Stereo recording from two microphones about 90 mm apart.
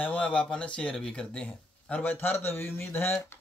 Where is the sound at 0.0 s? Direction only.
15° left (ahead or behind).